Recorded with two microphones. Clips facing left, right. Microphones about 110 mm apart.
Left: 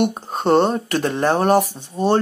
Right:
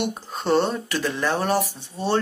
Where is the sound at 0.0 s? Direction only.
45° left (ahead or behind).